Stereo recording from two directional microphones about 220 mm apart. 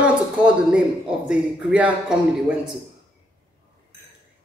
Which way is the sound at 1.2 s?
5° right (ahead or behind).